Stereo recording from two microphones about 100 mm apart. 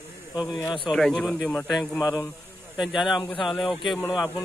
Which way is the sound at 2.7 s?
Centre (ahead or behind).